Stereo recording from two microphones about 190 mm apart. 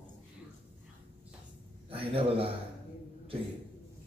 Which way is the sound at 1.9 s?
30° right (ahead or behind).